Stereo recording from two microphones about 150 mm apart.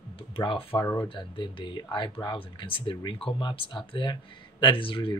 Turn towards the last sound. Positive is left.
turn(degrees=35)  # may be behind; listen again after turning